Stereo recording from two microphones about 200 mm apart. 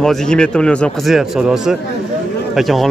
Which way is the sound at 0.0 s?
5° left (ahead or behind).